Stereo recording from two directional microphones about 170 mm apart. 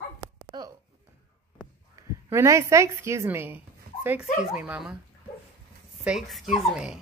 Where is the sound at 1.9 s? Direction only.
15° right (ahead or behind).